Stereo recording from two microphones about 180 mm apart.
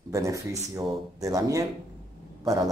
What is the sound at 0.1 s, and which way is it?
A man's voice, 15° right (ahead or behind).